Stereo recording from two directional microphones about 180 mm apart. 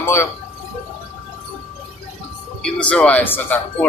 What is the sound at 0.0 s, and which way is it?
Speech, 15° left (ahead or behind).